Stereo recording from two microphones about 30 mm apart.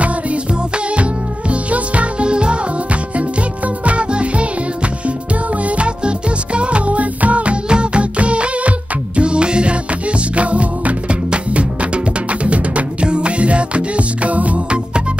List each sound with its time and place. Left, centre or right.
1.5 s music: right
5.8 s music: right
7.7 s music: right
10.3 s music: right